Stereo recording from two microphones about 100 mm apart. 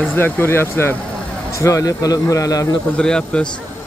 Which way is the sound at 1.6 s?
35° left (ahead or behind).